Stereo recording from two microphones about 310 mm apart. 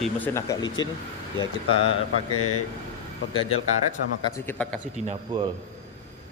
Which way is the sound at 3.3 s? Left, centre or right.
Centre.